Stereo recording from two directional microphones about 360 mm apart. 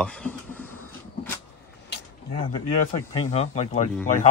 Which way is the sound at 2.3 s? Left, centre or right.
Centre.